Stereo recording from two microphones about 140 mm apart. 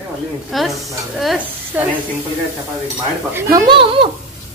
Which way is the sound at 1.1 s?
Centre (ahead or behind).